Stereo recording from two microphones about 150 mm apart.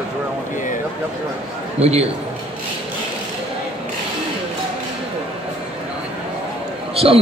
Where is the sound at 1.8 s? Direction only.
45° right (ahead or behind).